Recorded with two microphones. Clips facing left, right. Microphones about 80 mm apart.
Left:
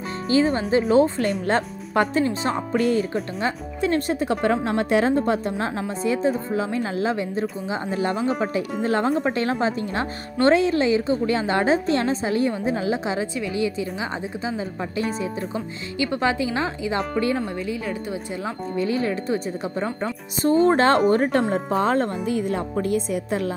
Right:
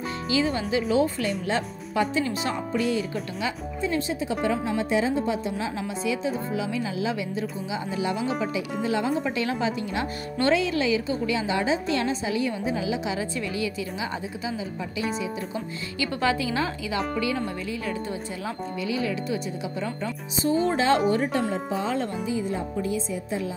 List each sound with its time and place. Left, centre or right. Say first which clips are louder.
0.3 s speech: left 6 dB; left
2.2 s speech: left 4 dB; left
2.7 s a woman's voice: left 6 dB; left
15.0 s speech: left 3 dB; left
16.0 s speech: left 3 dB; left
18.8 s a woman's voice: left 5 dB; left